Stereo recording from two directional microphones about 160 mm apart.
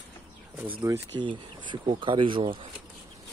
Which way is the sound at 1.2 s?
30° right (ahead or behind).